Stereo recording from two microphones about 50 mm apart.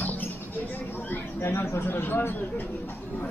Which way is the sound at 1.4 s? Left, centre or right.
Left.